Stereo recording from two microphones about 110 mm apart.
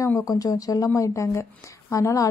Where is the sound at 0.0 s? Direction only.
30° left (ahead or behind).